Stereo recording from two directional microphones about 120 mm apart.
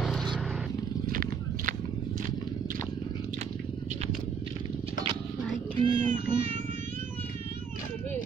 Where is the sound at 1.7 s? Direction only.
90° right.